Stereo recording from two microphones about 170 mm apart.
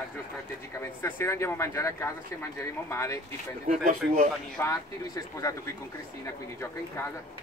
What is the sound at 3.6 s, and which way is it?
Speech, 45° right (ahead or behind).